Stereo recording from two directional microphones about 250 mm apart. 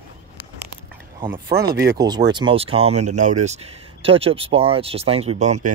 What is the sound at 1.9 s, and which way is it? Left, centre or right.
Speech, centre.